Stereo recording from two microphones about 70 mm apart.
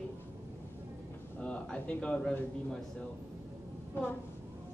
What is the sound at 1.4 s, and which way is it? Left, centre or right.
Speech, centre.